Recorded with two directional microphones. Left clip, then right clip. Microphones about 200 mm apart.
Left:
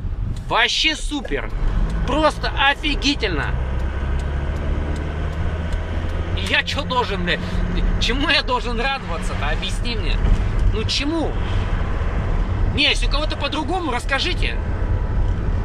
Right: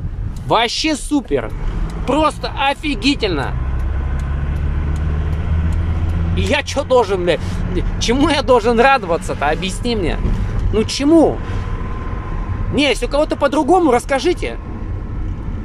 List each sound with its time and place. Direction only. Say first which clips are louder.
0.5 s speech: right 2 dB; 25° right (ahead or behind)
6.3 s speech: right 3 dB; 30° right (ahead or behind)
12.7 s speech: right 4 dB; 35° right (ahead or behind)